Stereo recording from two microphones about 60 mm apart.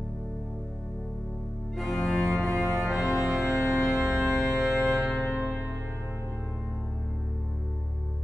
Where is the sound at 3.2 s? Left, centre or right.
Centre.